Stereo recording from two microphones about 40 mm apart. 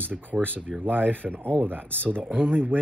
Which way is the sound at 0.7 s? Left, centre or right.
Centre.